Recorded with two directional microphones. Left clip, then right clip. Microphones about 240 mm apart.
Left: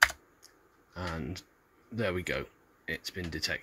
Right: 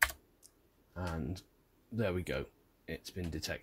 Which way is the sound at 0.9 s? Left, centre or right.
Centre.